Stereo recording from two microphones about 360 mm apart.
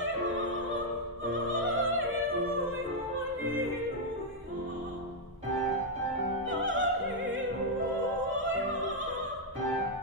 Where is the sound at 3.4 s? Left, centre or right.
Right.